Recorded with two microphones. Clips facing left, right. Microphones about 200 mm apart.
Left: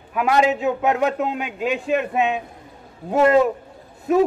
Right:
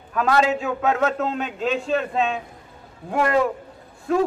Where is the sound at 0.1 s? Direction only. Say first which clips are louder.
Left 1 dB; 15° left (ahead or behind).